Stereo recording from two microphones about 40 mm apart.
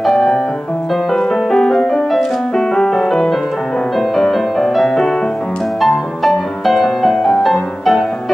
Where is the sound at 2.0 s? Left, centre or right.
Centre.